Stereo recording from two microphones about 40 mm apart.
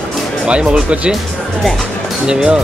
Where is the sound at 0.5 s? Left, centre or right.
Right.